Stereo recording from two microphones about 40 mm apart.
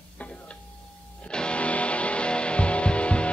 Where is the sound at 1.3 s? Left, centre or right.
Left.